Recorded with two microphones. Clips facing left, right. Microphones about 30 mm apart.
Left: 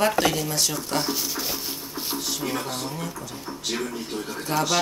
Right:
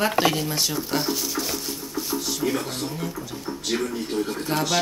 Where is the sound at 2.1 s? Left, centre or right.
Centre.